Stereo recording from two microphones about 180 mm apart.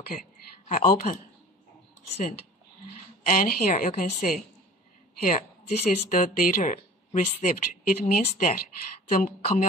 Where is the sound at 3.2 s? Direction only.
50° left (ahead or behind).